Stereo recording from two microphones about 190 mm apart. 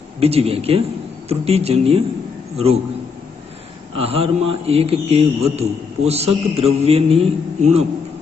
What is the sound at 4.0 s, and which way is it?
A man's voice, 30° right (ahead or behind).